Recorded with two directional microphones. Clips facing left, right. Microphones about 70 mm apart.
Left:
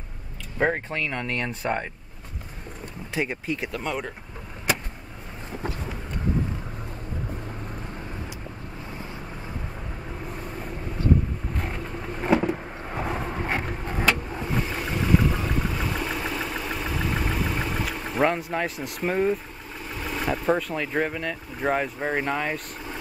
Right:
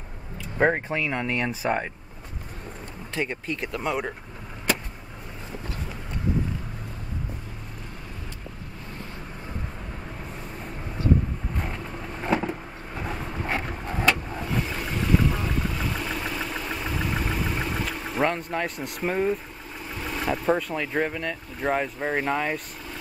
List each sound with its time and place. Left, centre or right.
0.6 s speech: centre
3.2 s speech: centre
3.8 s speech: centre
12.2 s vehicle: centre
19.9 s speech: centre